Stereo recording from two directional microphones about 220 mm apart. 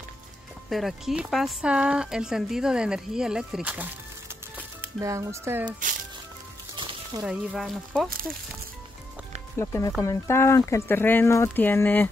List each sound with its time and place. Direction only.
0.7 s speech: centre (ahead or behind)
7.2 s speech: centre (ahead or behind)
9.6 s speech: 15° left (ahead or behind)